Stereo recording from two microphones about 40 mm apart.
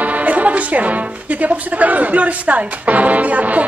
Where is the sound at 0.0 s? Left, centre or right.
Right.